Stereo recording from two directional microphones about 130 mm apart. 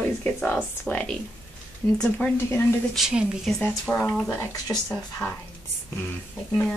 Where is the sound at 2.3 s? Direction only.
15° left (ahead or behind).